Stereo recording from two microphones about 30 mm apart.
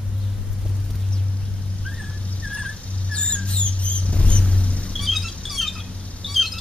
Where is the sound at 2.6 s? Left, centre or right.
Left.